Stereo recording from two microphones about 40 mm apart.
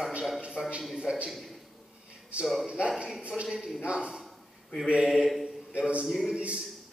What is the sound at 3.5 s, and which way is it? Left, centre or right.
A man's voice, centre.